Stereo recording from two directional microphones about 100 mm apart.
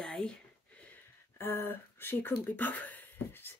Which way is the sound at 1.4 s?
25° left (ahead or behind).